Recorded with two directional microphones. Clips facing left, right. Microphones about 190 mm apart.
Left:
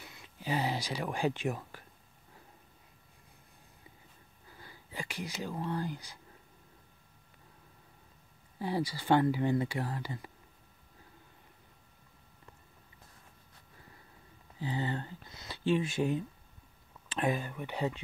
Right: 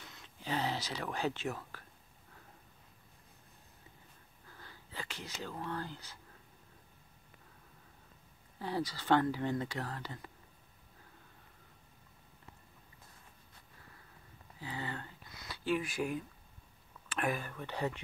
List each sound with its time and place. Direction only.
0.0 s speech: 10° left (ahead or behind)
4.5 s a sound: 10° left (ahead or behind)
8.5 s speech: 10° left (ahead or behind)
14.6 s speech: 25° left (ahead or behind)